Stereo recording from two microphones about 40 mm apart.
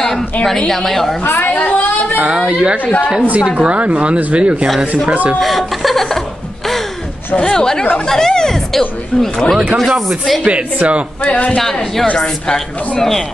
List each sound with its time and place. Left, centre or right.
0.0 s a woman's voice: centre
1.2 s a woman's voice: left
1.5 s a sound: left
2.1 s a woman's voice: right
5.4 s chuckle: centre
7.4 s speech: centre
8.1 s a sound: centre
9.8 s speech: centre
11.2 s speech: left
11.5 s speech: centre